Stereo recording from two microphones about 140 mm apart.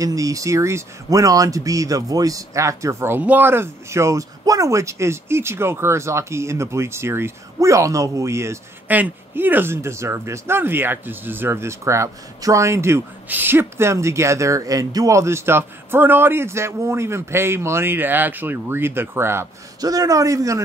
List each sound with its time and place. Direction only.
0.0 s speech: 25° right (ahead or behind)